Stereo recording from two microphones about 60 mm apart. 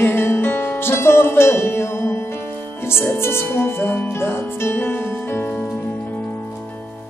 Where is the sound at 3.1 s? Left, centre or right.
Left.